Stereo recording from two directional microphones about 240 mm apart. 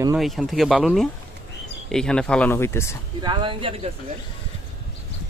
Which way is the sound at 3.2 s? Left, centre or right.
Centre.